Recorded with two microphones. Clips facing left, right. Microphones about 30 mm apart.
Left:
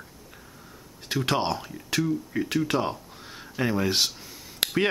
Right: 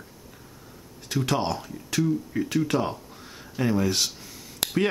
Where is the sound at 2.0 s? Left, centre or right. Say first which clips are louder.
Right 2 dB; centre.